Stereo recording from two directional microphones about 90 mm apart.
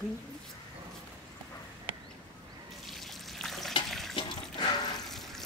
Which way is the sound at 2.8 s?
Centre (ahead or behind).